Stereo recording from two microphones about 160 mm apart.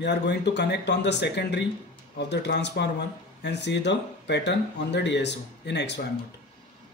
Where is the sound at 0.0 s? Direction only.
90° left.